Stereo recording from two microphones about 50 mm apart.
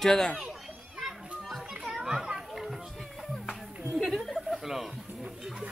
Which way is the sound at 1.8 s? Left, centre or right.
Centre.